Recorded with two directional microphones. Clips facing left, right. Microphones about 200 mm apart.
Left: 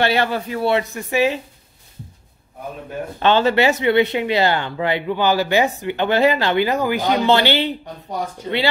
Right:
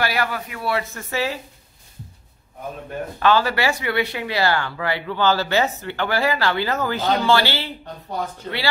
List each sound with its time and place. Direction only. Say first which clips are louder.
0.0 s speech: left 5 dB; 25° left (ahead or behind)
3.2 s speech: left 3 dB; 25° left (ahead or behind)